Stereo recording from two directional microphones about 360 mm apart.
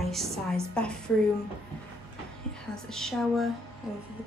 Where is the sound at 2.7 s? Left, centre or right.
Centre.